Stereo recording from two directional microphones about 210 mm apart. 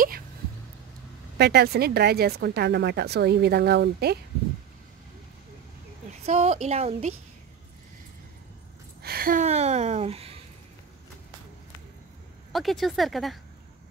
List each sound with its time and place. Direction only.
1.4 s speech: 50° right (ahead or behind)
6.2 s a woman's voice: 35° right (ahead or behind)
9.0 s speech: 45° right (ahead or behind); by 10.4 s 30° right (ahead or behind)
12.5 s speech: centre (ahead or behind)